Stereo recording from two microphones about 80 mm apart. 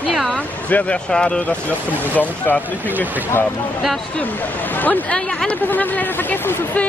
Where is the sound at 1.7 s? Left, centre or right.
Left.